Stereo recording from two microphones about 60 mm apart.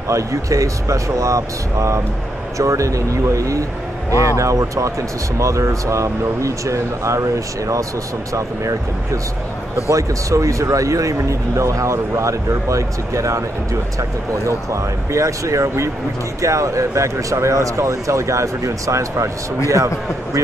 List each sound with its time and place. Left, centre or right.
0.1 s speech: right